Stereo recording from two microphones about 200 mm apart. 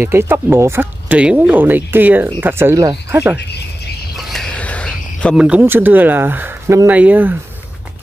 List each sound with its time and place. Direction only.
0.0 s speech: 10° right (ahead or behind)
3.3 s speech: 55° left (ahead or behind)
4.3 s cricket: 5° left (ahead or behind)
5.4 s speech: 5° right (ahead or behind)